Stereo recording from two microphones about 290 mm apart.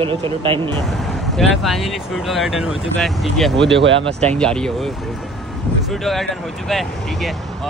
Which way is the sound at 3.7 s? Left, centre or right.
Right.